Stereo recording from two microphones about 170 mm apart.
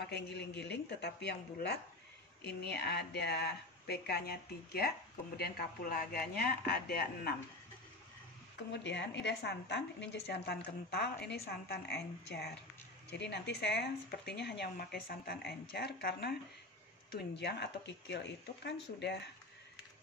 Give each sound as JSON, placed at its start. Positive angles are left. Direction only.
{"t": 0.0, "sound": "speech", "side_deg": 75}
{"t": 8.8, "sound": "a woman's voice", "side_deg": 90}
{"t": 13.1, "sound": "speech", "side_deg": 85}
{"t": 17.1, "sound": "speech", "side_deg": 80}